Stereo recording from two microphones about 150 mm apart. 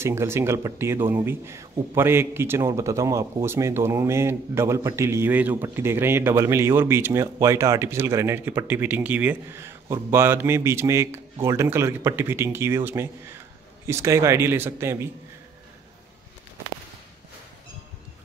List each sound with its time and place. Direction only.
0.0 s a man's voice: 15° right (ahead or behind)